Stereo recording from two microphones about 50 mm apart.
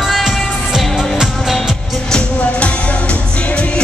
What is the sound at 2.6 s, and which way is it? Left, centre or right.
Music, left.